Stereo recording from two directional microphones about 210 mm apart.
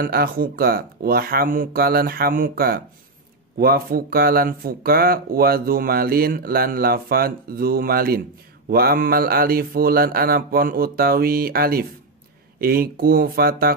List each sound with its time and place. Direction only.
0.0 s speech: 45° right (ahead or behind)